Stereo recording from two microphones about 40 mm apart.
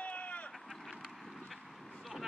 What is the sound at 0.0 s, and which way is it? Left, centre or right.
Vehicle, left.